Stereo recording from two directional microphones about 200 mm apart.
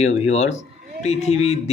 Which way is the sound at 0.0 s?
35° left (ahead or behind).